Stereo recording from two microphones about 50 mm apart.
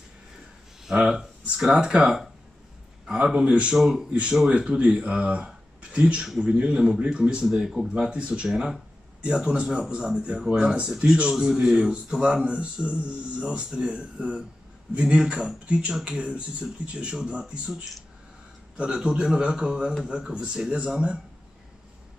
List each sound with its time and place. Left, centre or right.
0.8 s speech: centre
3.7 s speech: centre
4.1 s speech: right
8.1 s speech: right
18.8 s speech: centre